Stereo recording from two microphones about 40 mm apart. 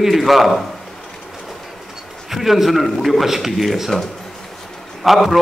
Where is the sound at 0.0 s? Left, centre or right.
Centre.